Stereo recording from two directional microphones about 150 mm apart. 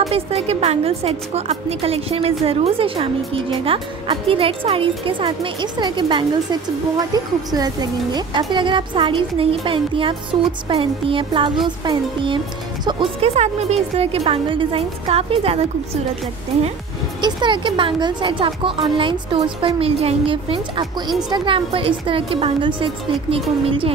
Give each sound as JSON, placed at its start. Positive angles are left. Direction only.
{"t": 0.1, "sound": "a woman's voice", "side_deg": -45}
{"t": 13.4, "sound": "a woman's voice", "side_deg": -45}
{"t": 17.2, "sound": "a woman's voice", "side_deg": -30}